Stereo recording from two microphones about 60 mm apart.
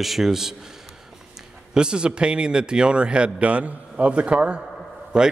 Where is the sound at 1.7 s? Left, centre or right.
Centre.